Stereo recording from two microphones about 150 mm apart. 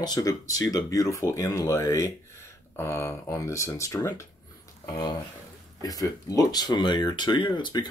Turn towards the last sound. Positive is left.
turn(degrees=30)  # may be behind; listen again after turning